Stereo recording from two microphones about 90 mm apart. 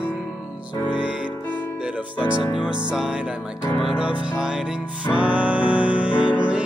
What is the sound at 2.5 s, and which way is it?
Music, 10° right (ahead or behind).